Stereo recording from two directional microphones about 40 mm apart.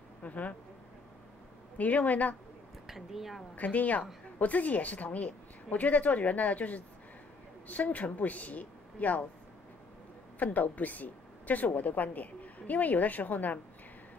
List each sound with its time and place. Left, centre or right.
0.2 s a woman's voice: left
1.8 s a woman's voice: left
2.9 s speech: centre
3.5 s a woman's voice: left
10.4 s a woman's voice: left